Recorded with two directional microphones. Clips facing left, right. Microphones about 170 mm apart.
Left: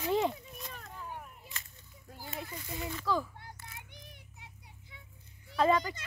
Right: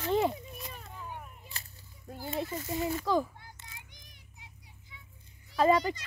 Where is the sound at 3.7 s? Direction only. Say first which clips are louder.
Left 4 dB; 60° left (ahead or behind).